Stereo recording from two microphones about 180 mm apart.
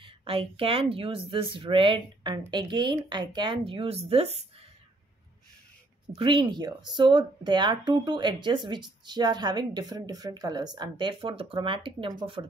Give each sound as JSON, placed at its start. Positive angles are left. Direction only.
{"t": 0.0, "sound": "speech", "side_deg": -30}
{"t": 6.1, "sound": "speech", "side_deg": -30}